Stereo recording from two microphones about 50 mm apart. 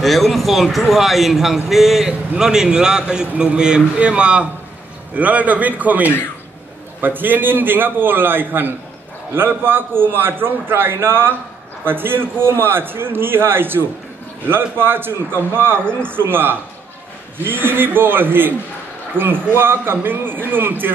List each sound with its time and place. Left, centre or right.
0.0 s a man's voice: centre; by 20.9 s right